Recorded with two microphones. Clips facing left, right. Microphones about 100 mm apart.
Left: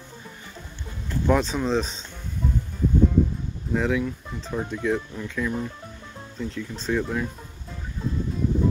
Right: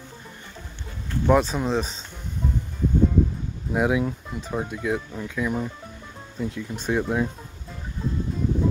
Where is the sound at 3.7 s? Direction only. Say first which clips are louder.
Right 2 dB; 15° right (ahead or behind).